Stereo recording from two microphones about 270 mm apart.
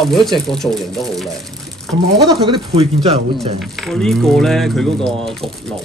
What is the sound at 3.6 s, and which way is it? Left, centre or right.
Speech, centre.